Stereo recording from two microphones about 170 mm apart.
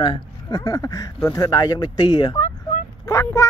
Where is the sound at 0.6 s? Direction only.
20° left (ahead or behind).